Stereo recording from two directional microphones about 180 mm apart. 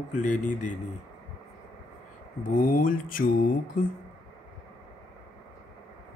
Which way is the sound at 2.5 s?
50° left (ahead or behind).